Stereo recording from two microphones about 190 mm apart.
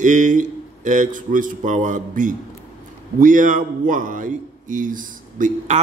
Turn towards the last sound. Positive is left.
turn(degrees=-40)  # may be behind; listen again after turning